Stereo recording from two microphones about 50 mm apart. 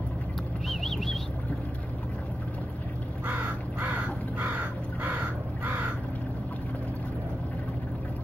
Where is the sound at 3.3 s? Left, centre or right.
Right.